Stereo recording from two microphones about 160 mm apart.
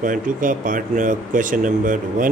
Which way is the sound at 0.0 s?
55° right (ahead or behind).